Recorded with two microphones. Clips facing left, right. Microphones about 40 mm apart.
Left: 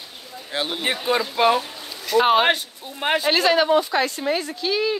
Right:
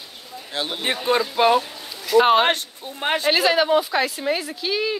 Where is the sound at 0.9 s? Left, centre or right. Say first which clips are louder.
Right 3 dB; centre.